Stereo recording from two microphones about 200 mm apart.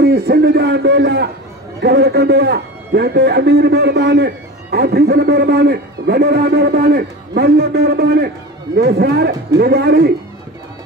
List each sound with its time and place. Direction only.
0.0 s a man's voice: 55° right (ahead or behind)